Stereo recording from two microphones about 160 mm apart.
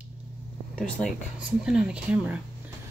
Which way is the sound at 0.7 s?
5° right (ahead or behind).